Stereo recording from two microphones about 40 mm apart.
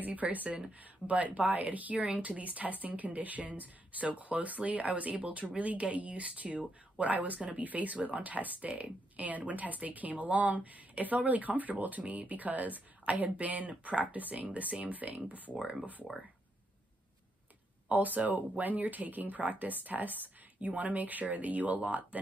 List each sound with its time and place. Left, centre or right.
0.0 s speech: right
17.8 s speech: right